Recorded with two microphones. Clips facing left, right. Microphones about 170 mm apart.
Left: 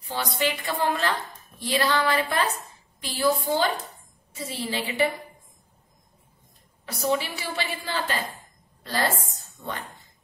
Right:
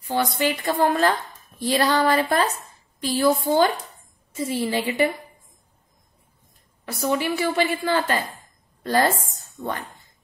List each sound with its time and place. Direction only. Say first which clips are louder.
0.1 s a woman's voice: right 5 dB; 50° right (ahead or behind)
1.6 s a sound: right 4 dB; 45° right (ahead or behind)
3.0 s a woman's voice: right 4 dB; 45° right (ahead or behind)
6.9 s a woman's voice: right 3 dB; 55° right (ahead or behind)